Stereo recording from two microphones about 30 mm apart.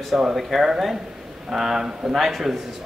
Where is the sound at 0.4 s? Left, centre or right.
Centre.